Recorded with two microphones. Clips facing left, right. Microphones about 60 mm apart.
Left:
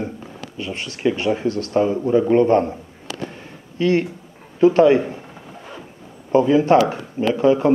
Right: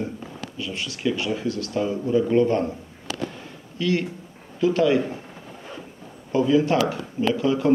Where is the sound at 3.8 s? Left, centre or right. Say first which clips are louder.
Left 6 dB; left.